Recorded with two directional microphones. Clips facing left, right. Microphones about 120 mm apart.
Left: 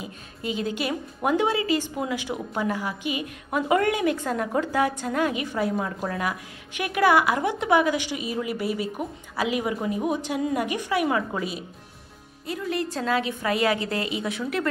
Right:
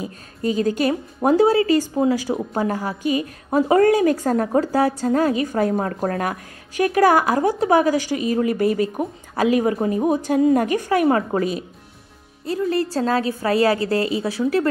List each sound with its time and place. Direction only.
0.0 s a woman's voice: 40° right (ahead or behind)
12.4 s a woman's voice: 35° right (ahead or behind)